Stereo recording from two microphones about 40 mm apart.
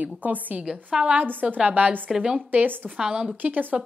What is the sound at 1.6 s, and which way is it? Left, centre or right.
Speech, right.